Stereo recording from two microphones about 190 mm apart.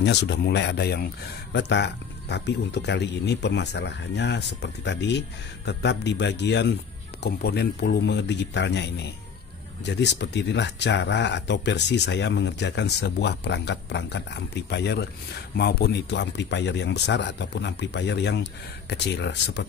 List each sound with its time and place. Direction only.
0.0 s speech: 65° left (ahead or behind)